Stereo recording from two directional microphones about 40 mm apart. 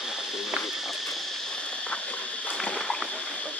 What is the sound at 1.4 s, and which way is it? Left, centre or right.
Walk, left.